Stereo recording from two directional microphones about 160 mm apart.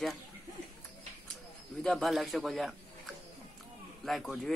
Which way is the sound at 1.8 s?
Centre (ahead or behind).